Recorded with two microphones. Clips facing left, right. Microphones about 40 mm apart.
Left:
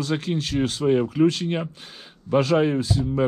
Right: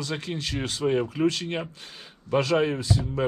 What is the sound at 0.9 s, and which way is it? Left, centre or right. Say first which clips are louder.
Speech: left 5 dB; left.